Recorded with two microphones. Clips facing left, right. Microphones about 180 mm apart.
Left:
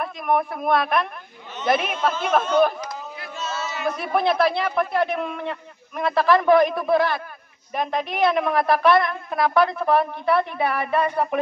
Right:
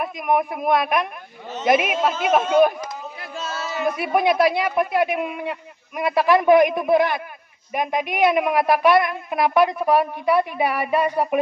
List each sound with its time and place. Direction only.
0.0 s a woman's voice: 15° right (ahead or behind)
3.3 s a sound: 35° right (ahead or behind)
3.8 s a woman's voice: 15° right (ahead or behind)